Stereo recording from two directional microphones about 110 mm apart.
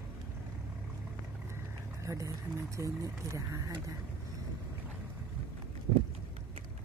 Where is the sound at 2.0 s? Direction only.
30° right (ahead or behind).